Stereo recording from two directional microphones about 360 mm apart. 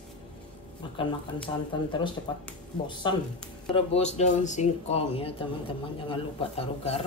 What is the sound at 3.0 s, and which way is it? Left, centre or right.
Speech, centre.